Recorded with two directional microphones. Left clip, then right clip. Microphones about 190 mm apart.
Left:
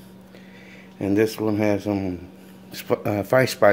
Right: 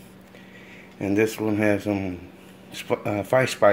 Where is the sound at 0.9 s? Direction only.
15° left (ahead or behind).